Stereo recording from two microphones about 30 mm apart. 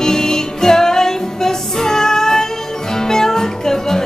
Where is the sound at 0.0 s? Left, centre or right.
Centre.